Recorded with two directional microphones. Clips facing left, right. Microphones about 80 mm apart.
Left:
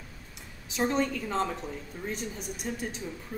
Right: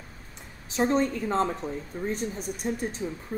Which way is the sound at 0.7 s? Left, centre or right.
Right.